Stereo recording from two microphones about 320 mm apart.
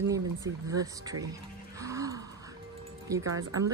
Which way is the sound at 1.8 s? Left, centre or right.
Centre.